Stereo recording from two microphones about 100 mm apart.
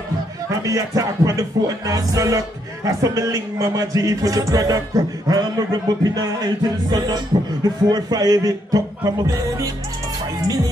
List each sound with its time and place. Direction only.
0.5 s speech: 35° right (ahead or behind)